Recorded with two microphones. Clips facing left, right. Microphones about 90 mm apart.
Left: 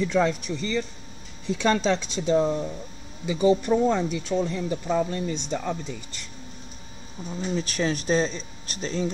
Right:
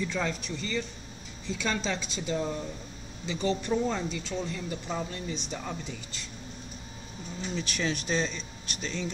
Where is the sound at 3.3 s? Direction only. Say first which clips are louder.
Left 9 dB; 10° left (ahead or behind).